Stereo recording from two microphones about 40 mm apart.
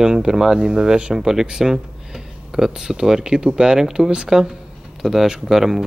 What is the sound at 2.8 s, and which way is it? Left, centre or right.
Speech, centre.